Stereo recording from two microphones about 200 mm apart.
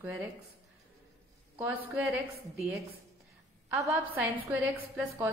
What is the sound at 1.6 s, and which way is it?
Speech, 10° right (ahead or behind).